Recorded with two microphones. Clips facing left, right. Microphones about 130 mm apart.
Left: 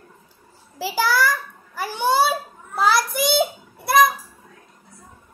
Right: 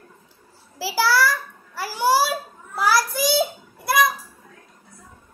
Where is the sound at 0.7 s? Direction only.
20° left (ahead or behind).